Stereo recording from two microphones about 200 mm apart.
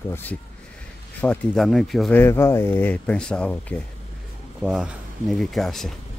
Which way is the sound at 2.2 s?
15° left (ahead or behind).